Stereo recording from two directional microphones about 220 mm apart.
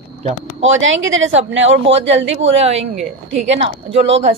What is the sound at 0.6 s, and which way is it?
Speech, 60° right (ahead or behind).